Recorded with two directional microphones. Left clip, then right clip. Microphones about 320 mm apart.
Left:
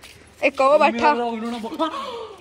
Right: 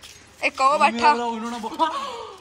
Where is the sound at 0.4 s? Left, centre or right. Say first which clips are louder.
Left 2 dB; centre.